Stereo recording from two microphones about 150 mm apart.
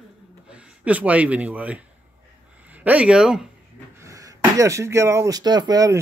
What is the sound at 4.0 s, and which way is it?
Speech, 20° right (ahead or behind).